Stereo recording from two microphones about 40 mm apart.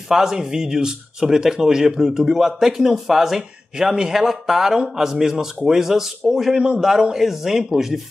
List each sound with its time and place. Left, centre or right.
0.1 s speech: centre